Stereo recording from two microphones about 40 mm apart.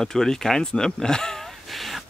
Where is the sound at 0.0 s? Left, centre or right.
Centre.